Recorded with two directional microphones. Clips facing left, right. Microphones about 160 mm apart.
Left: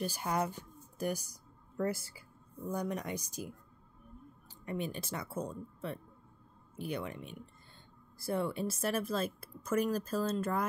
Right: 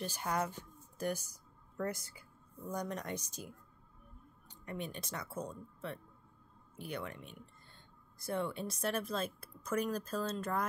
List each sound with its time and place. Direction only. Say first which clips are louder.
0.0 s speech: left 3 dB; 10° left (ahead or behind)